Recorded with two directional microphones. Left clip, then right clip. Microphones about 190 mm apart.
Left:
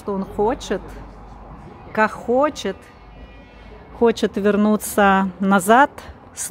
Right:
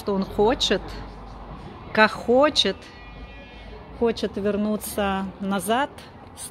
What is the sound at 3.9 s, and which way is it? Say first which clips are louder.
Speech: left 6 dB; 45° left (ahead or behind).